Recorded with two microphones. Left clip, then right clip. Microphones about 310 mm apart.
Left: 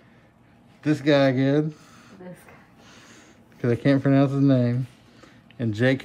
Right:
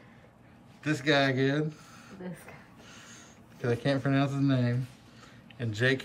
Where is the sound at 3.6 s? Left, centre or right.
Left.